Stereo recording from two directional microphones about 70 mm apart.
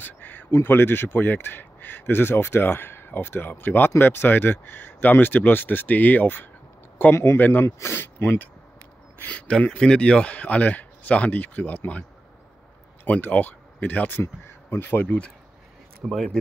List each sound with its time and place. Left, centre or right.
0.0 s a sound: left
0.5 s speech: left
9.2 s speech: centre
13.0 s speech: left
14.2 s speech: left
14.9 s speech: left
16.1 s speech: centre